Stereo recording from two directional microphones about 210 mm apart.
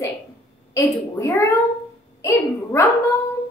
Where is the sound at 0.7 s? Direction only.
15° left (ahead or behind).